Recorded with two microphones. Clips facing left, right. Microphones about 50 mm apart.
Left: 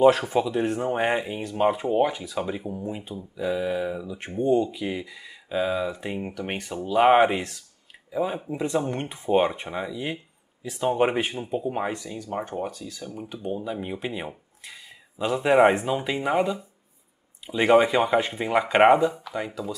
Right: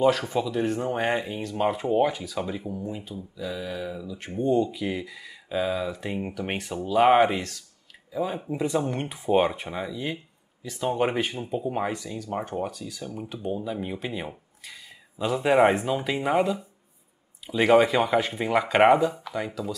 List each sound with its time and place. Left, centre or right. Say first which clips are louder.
0.0 s speech: left 4 dB; centre
2.7 s speech: left 1 dB; left
4.5 s speech: left 1 dB; centre
8.4 s speech: even; centre
11.5 s speech: even; centre